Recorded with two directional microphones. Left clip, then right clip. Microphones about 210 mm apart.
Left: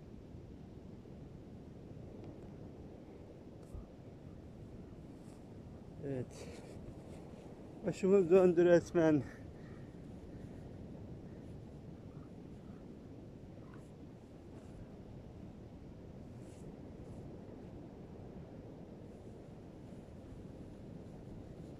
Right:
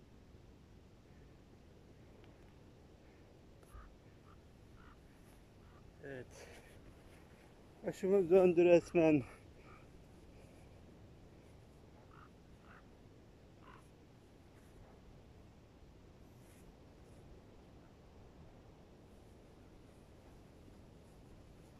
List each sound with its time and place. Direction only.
6.0 s speech: 20° left (ahead or behind)
7.8 s a man's voice: 10° left (ahead or behind)